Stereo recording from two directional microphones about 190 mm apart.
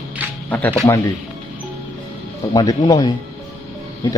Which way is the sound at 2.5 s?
20° left (ahead or behind).